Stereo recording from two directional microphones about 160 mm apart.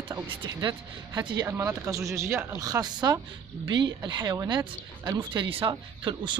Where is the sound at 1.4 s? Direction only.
15° right (ahead or behind).